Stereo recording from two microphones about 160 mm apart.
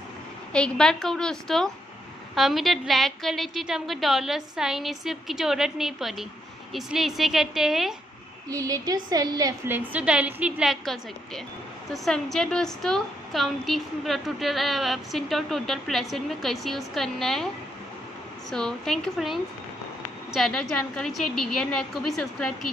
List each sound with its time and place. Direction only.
0.5 s a woman's voice: 5° left (ahead or behind)
8.5 s speech: 20° right (ahead or behind)
9.7 s a woman's voice: 10° right (ahead or behind)
18.5 s a woman's voice: 5° left (ahead or behind)